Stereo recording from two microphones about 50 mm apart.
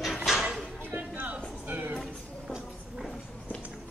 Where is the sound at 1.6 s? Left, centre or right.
Right.